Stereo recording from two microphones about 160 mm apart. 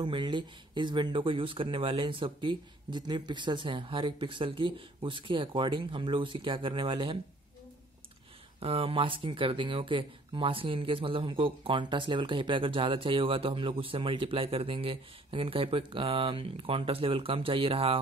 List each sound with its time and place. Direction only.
0.0 s speech: 30° right (ahead or behind)
8.5 s speech: 35° right (ahead or behind)